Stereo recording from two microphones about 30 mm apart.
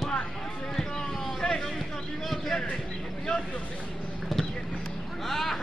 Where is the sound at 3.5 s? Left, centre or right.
Left.